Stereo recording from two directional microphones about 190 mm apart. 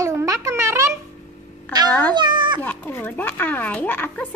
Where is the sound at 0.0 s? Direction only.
15° right (ahead or behind).